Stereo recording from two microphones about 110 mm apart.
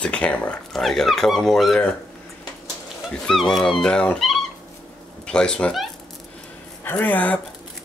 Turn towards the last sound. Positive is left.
turn(degrees=15)  # may be behind; listen again after turning